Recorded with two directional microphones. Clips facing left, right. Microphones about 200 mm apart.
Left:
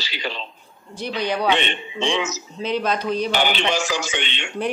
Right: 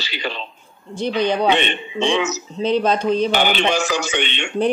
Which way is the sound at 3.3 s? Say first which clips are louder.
Right 3 dB; 55° right (ahead or behind).